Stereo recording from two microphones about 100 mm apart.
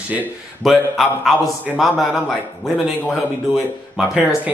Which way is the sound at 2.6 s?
Centre (ahead or behind).